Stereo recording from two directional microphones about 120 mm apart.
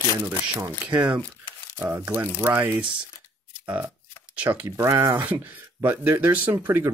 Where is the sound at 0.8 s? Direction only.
15° right (ahead or behind).